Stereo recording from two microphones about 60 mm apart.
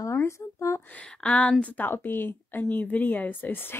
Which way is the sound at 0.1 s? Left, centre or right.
Left.